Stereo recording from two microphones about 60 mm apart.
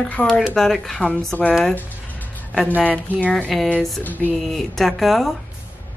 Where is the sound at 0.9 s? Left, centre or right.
Centre.